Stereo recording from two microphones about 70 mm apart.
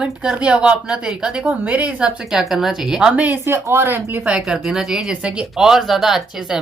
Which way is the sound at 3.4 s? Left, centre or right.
Right.